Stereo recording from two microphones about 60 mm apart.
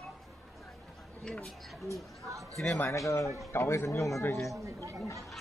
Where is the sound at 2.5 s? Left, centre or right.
Centre.